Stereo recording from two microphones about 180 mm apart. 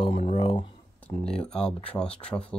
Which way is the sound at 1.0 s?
5° left (ahead or behind).